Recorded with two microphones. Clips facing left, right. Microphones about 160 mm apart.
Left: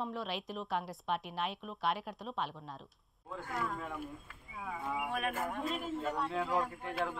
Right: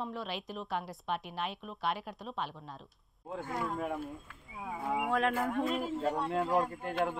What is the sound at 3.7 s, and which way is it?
Speech, 45° right (ahead or behind).